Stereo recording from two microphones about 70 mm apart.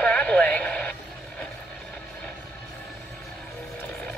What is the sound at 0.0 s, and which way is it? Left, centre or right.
Radio, centre.